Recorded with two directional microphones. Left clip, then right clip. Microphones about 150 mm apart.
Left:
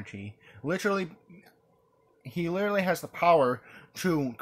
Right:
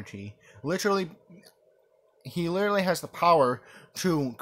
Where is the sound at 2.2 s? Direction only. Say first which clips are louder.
Right 2 dB; 25° right (ahead or behind).